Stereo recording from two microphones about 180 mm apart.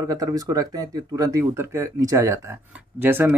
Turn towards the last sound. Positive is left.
turn(degrees=-10)  # may be behind; listen again after turning